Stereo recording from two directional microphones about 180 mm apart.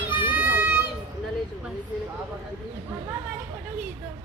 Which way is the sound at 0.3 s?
10° right (ahead or behind).